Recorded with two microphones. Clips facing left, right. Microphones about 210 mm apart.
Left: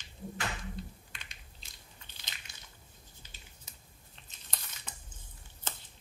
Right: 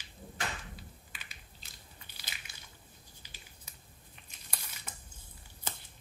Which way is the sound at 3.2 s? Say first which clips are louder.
Even; 10° right (ahead or behind).